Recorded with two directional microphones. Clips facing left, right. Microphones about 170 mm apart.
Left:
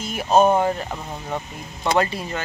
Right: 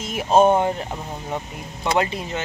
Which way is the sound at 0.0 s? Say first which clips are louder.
Right 1 dB; 25° right (ahead or behind).